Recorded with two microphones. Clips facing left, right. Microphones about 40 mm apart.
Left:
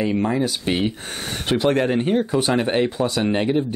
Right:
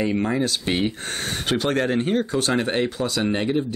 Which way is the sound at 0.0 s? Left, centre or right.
Centre.